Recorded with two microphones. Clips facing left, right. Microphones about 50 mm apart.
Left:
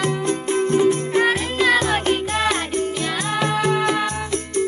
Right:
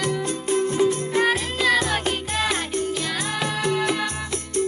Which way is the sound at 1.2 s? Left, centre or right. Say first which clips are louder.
Left 2 dB; centre.